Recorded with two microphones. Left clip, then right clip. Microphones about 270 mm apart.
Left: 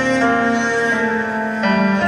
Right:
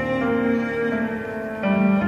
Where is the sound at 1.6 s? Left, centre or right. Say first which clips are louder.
Left 4 dB; left.